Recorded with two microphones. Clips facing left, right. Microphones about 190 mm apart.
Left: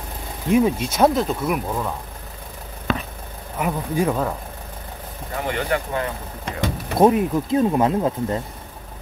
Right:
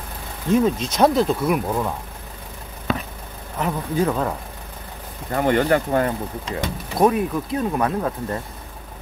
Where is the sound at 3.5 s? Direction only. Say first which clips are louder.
Even; 10° left (ahead or behind).